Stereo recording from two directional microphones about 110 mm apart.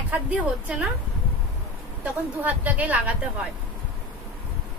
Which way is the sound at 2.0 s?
15° right (ahead or behind).